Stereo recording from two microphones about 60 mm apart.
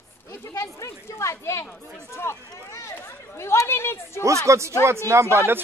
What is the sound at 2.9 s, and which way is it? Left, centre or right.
Chatter, left.